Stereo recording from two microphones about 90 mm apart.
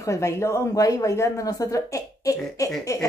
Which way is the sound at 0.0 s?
35° left (ahead or behind).